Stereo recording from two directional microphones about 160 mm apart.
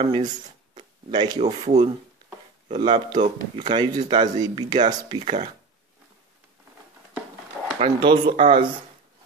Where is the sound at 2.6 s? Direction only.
35° right (ahead or behind).